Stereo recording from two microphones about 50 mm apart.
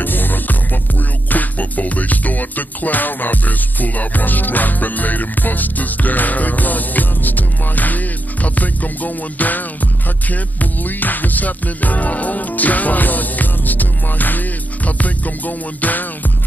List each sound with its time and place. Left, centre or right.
0.0 s music: left